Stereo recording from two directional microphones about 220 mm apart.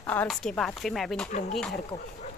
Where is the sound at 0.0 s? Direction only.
5° left (ahead or behind).